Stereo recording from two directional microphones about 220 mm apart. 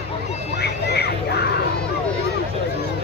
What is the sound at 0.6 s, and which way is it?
Music, 50° left (ahead or behind).